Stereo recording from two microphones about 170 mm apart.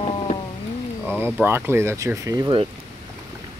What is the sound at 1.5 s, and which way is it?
Speech, 15° right (ahead or behind).